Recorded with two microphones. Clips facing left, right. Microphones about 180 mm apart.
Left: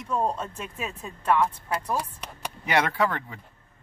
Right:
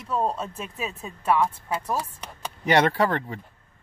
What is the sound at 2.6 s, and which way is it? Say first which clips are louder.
Speech: right 4 dB; 35° right (ahead or behind).